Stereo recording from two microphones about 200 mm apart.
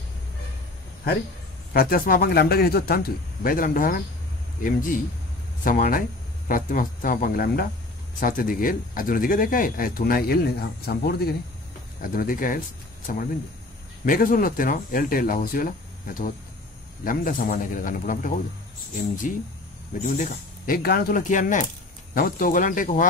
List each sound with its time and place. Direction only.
1.7 s speech: 50° left (ahead or behind)